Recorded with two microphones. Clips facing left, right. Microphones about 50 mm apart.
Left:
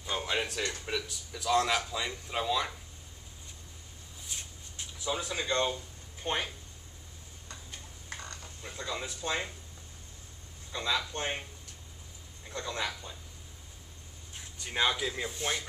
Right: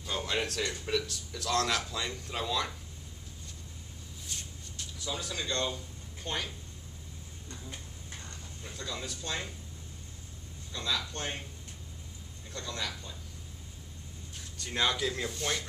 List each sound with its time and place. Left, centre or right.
0.0 s a man's voice: centre
4.3 s shuffle: centre
4.7 s speech: left
8.6 s speech: left
10.7 s speech: left
12.4 s speech: left
14.3 s speech: centre